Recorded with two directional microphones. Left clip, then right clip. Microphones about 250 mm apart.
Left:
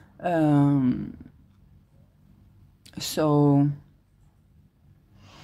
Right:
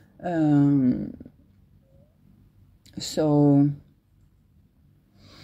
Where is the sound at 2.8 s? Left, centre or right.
Centre.